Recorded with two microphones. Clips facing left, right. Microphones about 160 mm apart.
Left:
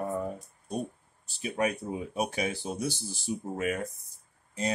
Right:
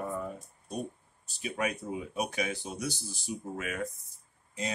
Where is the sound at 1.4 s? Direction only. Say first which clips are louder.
Left 3 dB; 35° left (ahead or behind).